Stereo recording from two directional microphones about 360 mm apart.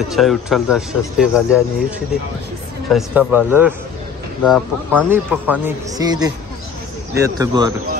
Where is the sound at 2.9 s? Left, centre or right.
Centre.